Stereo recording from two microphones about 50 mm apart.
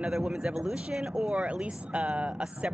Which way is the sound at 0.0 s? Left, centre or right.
Centre.